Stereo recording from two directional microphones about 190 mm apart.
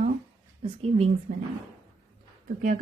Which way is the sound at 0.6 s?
30° right (ahead or behind).